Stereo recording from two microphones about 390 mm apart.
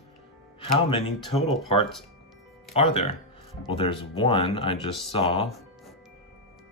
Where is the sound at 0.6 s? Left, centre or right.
Centre.